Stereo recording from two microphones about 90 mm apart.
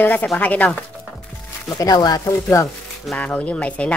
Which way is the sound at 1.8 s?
45° left (ahead or behind).